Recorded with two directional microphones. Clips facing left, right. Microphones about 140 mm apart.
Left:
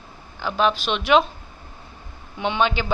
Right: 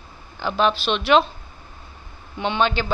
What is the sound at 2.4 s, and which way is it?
Speech, 10° left (ahead or behind).